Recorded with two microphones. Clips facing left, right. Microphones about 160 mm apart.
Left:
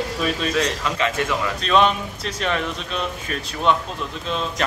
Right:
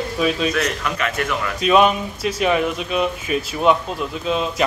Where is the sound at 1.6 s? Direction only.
10° right (ahead or behind).